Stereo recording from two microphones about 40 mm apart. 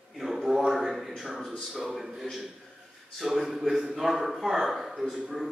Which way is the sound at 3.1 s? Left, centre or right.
Centre.